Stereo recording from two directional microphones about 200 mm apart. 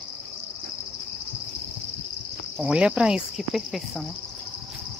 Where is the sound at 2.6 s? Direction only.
5° right (ahead or behind).